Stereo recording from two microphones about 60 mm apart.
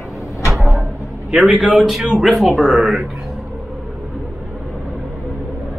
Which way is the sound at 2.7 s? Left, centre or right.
Centre.